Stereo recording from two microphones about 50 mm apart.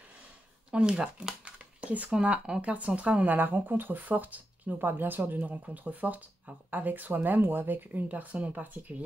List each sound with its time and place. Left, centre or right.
0.7 s speech: centre
1.4 s a sound: right
2.2 s speech: right
3.3 s speech: right
8.1 s speech: right